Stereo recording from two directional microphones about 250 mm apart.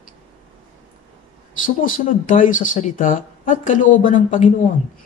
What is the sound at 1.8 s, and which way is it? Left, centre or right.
Speech, left.